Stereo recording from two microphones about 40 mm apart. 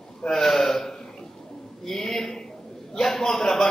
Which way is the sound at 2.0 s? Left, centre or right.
Centre.